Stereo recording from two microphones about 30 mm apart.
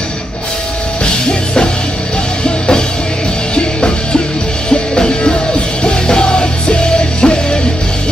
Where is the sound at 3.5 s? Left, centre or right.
Left.